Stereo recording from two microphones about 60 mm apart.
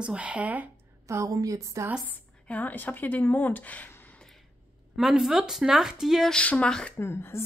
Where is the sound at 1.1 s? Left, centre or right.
Right.